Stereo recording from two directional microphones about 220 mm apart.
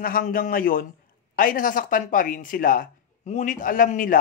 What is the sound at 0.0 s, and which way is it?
Speech, 40° left (ahead or behind).